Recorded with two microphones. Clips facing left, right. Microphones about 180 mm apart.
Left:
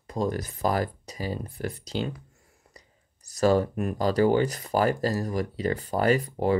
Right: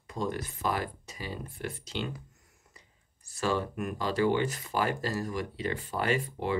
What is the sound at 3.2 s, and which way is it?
Speech, 40° left (ahead or behind).